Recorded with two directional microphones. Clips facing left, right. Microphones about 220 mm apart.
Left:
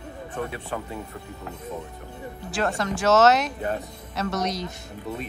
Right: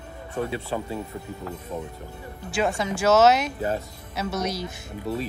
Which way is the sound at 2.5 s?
Centre (ahead or behind).